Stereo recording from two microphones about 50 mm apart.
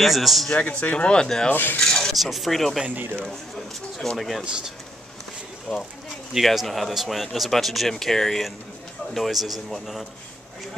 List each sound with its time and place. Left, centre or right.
0.0 s speech: centre
0.6 s speech: left
1.5 s filing: left
1.8 s rub: centre
2.1 s speech: centre
2.9 s speech: right
4.2 s speech: centre
6.3 s speech: centre